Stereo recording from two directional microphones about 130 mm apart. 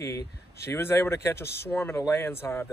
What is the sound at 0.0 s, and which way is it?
Speech, 20° left (ahead or behind).